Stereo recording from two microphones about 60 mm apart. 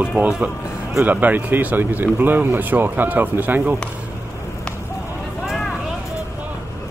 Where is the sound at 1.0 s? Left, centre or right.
Right.